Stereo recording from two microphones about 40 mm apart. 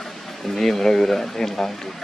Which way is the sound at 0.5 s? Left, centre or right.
Centre.